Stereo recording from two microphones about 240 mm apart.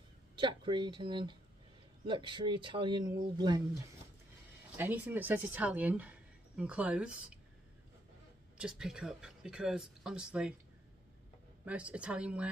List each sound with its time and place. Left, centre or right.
0.4 s speech: centre
4.7 s speech: centre
8.5 s speech: centre
11.6 s speech: centre